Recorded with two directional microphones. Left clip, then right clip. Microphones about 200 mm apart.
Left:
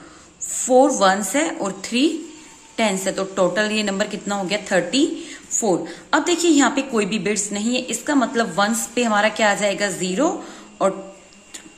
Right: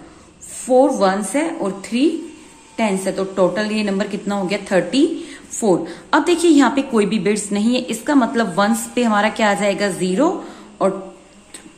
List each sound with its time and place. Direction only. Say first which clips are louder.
0.5 s a woman's voice: right 1 dB; 20° left (ahead or behind)